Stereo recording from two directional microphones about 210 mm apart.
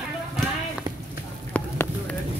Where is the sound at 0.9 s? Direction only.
20° right (ahead or behind).